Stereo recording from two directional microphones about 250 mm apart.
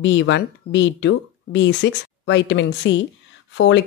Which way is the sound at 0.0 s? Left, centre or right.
Left.